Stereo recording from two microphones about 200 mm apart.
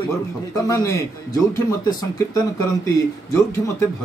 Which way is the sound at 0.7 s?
15° left (ahead or behind).